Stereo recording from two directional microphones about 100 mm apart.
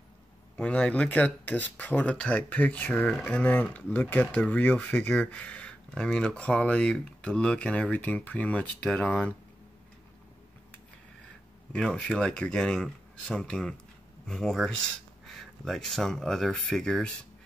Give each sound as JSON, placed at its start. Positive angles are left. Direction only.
{"t": 0.6, "sound": "speech", "side_deg": 15}
{"t": 11.7, "sound": "speech", "side_deg": 10}